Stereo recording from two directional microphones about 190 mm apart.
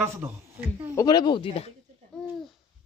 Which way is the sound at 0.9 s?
20° left (ahead or behind).